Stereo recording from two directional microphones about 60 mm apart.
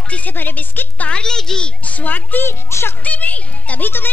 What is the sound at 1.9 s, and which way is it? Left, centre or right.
Speech, left.